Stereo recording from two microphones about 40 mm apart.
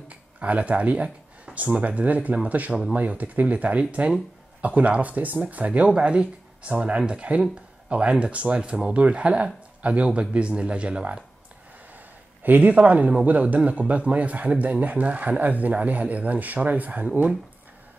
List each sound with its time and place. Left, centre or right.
0.1 s a man's voice: right
5.9 s a man's voice: right
12.4 s a man's voice: right